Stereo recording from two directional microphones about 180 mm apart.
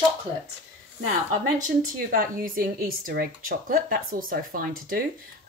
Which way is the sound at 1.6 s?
50° right (ahead or behind).